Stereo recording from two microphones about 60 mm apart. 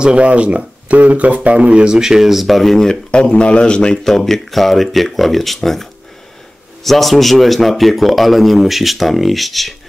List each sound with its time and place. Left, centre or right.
0.0 s speech: centre
3.1 s a man's voice: centre